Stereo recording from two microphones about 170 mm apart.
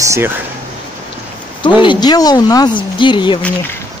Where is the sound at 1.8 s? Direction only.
25° left (ahead or behind).